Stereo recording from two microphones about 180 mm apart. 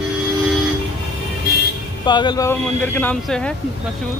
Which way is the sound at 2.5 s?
10° left (ahead or behind).